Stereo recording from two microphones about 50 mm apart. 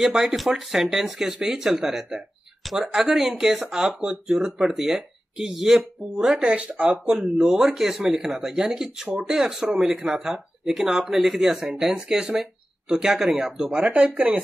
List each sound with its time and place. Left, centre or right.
0.0 s speech: centre
6.4 s speech: right
6.9 s speech: centre
13.7 s speech: right